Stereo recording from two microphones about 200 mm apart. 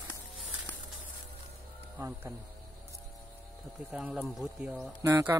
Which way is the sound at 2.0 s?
15° right (ahead or behind).